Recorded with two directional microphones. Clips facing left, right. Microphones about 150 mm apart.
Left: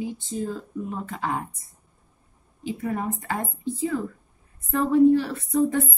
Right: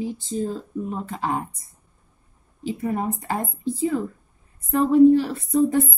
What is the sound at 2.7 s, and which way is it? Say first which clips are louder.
A woman's voice: right 3 dB; 30° right (ahead or behind).